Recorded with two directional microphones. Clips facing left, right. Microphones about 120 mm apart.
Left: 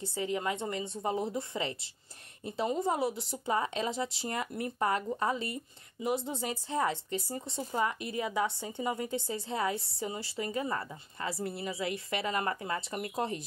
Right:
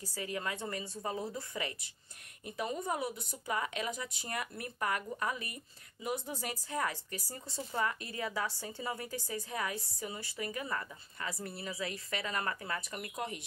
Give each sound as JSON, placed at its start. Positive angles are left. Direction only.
{"t": 0.0, "sound": "a woman's voice", "side_deg": 25}